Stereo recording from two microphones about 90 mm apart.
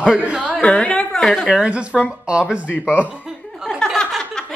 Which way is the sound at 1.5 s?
10° right (ahead or behind).